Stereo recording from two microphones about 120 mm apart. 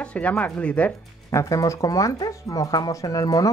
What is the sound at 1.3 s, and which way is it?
Speech, 25° left (ahead or behind).